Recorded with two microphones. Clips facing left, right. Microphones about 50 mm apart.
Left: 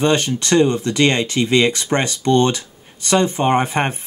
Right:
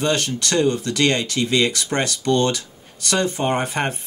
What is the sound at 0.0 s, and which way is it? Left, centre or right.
Speech, left.